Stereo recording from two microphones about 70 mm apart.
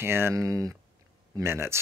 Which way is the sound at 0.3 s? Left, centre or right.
Right.